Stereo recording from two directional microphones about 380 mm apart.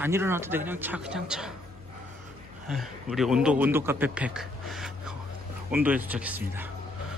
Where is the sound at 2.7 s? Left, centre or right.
Centre.